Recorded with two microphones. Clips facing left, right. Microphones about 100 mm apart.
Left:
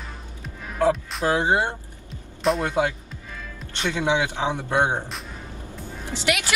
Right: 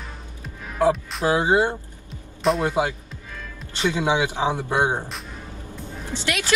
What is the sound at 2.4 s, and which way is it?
Speech, centre (ahead or behind).